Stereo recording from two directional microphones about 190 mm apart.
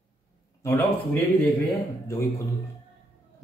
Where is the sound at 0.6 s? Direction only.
10° left (ahead or behind).